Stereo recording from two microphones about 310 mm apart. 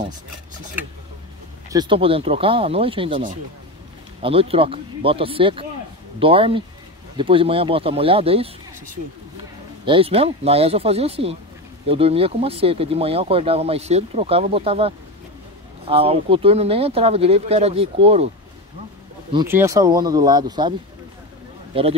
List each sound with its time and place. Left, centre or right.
1.7 s speech: centre
9.8 s speech: centre
19.3 s speech: centre
21.7 s speech: centre